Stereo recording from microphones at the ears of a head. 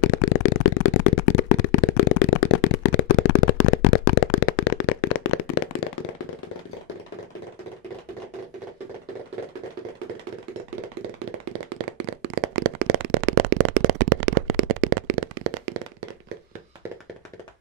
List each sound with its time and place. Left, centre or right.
0.0 s shuffling cards: left
9.9 s tap: right